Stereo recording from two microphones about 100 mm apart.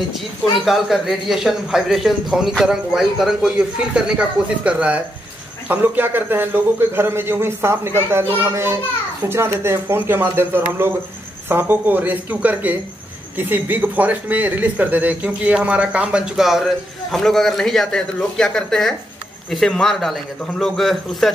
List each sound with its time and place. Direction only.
0.7 s a man's voice: centre (ahead or behind)